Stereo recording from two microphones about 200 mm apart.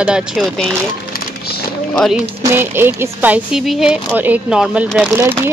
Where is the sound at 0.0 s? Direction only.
5° right (ahead or behind).